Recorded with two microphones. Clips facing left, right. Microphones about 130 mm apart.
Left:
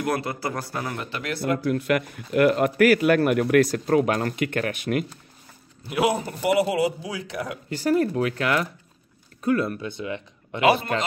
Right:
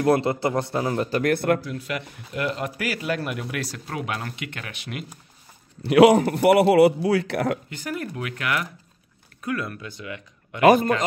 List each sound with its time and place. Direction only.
0.0 s a man's voice: 25° right (ahead or behind)
1.1 s speech: 50° right (ahead or behind)
1.6 s speech: 60° left (ahead or behind)
5.9 s a man's voice: 70° right (ahead or behind)
7.7 s speech: 35° left (ahead or behind)
10.6 s speech: 45° right (ahead or behind)